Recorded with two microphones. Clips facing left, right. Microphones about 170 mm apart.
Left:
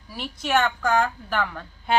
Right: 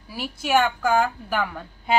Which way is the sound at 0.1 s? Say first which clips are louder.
Right 2 dB; 5° right (ahead or behind).